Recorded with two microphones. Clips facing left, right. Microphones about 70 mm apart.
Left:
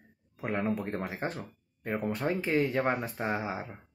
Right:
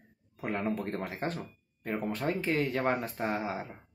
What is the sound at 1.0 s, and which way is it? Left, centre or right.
Speech, centre.